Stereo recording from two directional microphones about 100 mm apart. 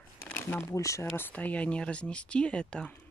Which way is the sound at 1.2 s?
15° left (ahead or behind).